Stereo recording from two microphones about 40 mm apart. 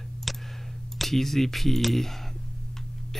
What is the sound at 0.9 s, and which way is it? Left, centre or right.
Speech, centre.